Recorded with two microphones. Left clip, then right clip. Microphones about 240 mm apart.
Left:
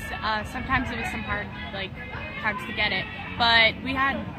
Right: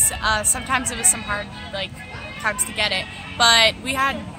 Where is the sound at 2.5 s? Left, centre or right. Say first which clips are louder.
Right 4 dB; right.